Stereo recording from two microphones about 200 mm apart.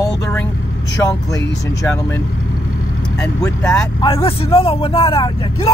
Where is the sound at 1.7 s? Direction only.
15° left (ahead or behind).